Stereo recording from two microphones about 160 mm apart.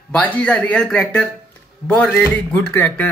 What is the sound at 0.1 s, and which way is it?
Speech, 10° left (ahead or behind).